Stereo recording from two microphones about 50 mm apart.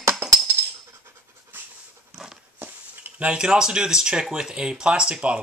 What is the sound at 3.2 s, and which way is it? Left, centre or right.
Speech, centre.